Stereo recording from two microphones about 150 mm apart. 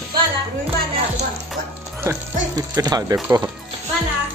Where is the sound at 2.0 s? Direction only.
25° right (ahead or behind).